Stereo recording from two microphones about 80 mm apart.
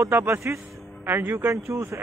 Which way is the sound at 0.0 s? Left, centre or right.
Right.